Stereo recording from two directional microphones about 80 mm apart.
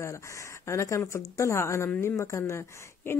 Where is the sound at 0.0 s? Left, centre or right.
Left.